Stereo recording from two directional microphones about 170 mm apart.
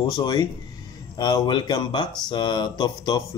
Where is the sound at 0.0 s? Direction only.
25° left (ahead or behind).